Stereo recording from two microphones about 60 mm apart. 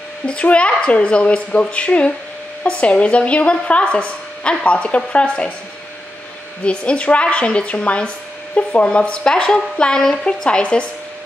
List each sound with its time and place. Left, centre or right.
0.3 s speech: centre
6.6 s speech: centre